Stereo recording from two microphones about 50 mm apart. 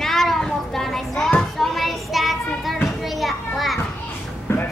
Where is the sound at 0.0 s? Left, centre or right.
Centre.